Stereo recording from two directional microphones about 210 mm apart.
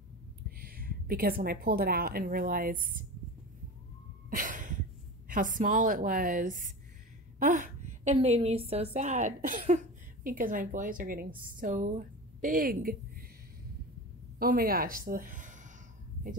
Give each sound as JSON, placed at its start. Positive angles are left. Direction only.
{"t": 0.6, "sound": "a woman's voice", "side_deg": -45}
{"t": 4.3, "sound": "a sound", "side_deg": -40}
{"t": 5.3, "sound": "a woman's voice", "side_deg": -40}
{"t": 14.4, "sound": "a woman's voice", "side_deg": -45}